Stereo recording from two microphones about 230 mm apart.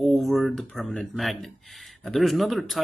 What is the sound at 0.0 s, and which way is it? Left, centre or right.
Speech, centre.